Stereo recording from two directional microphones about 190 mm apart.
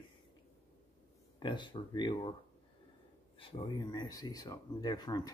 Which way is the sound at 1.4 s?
25° left (ahead or behind).